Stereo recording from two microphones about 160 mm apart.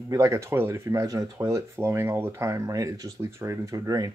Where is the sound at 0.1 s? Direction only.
20° right (ahead or behind).